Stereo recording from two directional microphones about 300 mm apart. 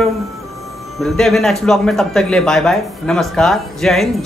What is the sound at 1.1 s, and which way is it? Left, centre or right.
A man's voice, centre.